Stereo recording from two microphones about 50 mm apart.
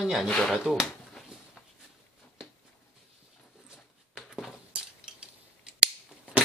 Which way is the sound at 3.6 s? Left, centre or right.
Centre.